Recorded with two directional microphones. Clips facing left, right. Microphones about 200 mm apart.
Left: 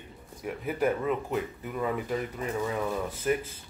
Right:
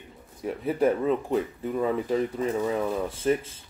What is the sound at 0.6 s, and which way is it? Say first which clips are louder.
Speech: right 4 dB; 30° right (ahead or behind).